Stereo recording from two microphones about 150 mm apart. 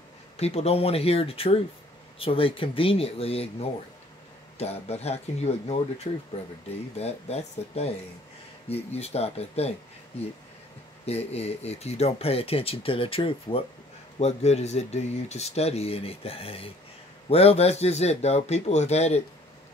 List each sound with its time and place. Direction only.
0.4 s speech: 45° left (ahead or behind)
11.1 s speech: 45° left (ahead or behind)